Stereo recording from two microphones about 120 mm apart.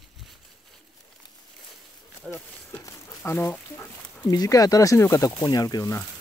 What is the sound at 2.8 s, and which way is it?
Speech, 20° left (ahead or behind).